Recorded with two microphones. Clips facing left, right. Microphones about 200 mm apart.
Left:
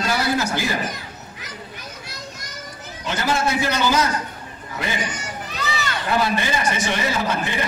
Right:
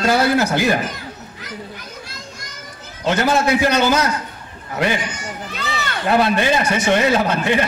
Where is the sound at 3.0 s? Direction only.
60° right (ahead or behind).